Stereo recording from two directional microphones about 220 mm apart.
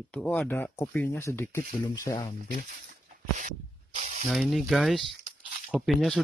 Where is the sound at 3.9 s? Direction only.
35° right (ahead or behind).